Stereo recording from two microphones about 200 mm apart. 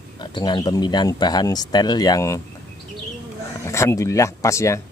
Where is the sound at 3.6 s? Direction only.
15° left (ahead or behind).